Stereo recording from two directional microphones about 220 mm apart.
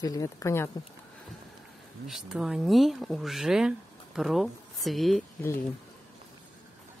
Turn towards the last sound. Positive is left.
turn(degrees=0)  # may be behind; listen again after turning